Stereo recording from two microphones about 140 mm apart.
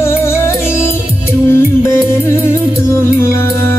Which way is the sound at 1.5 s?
20° left (ahead or behind).